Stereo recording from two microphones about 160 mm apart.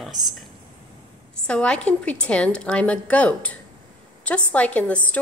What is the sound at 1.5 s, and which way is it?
A woman's voice, 5° left (ahead or behind).